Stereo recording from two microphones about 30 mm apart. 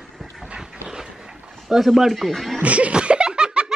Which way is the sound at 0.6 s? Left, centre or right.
Right.